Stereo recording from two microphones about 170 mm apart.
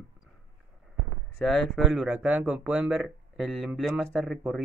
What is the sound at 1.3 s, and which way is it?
Speech, centre (ahead or behind).